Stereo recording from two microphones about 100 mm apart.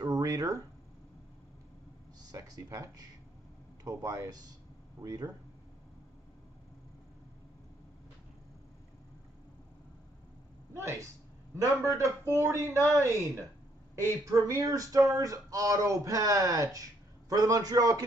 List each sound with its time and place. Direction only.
0.0 s a sound: 40° right (ahead or behind)
2.3 s speech: 35° right (ahead or behind)
11.5 s a man's voice: 30° right (ahead or behind)